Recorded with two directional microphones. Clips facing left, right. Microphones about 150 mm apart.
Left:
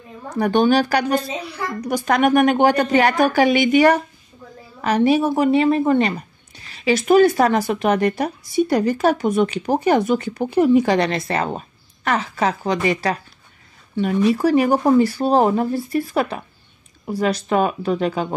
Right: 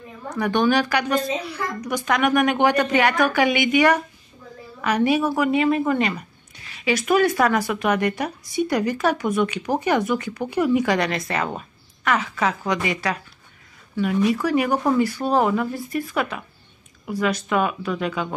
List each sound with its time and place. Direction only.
0.3 s speech: 30° left (ahead or behind)